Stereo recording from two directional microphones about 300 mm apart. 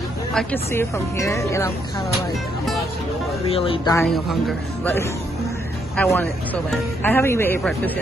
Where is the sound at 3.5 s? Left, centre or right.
Centre.